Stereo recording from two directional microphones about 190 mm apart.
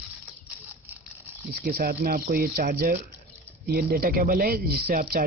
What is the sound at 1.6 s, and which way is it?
Speech, 50° right (ahead or behind).